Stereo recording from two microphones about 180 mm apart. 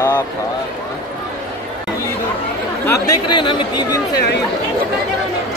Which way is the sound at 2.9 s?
20° left (ahead or behind).